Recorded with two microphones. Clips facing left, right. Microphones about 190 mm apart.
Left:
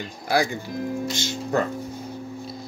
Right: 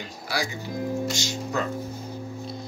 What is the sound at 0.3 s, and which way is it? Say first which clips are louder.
Speech: left 7 dB; 55° left (ahead or behind).